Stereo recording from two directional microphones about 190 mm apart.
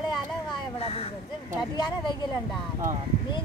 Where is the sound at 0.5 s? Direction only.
30° left (ahead or behind).